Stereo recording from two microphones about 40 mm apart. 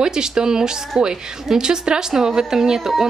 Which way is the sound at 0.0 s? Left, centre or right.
Centre.